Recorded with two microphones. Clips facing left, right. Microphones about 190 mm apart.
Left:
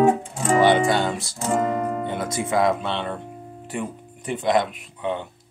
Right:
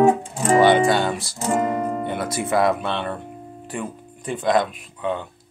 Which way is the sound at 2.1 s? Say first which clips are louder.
Right 1 dB; 65° right (ahead or behind).